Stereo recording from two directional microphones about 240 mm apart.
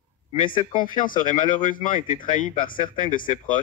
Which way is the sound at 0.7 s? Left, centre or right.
Left.